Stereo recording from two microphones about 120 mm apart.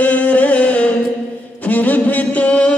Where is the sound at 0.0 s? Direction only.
15° left (ahead or behind).